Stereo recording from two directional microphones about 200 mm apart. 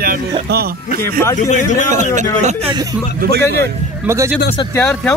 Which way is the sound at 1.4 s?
40° left (ahead or behind).